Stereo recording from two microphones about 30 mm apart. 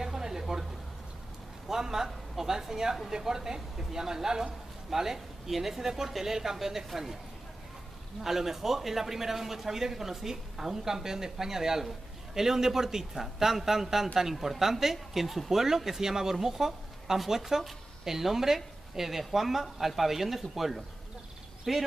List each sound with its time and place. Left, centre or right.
0.0 s a sound: centre
1.7 s speech: centre
8.2 s speech: centre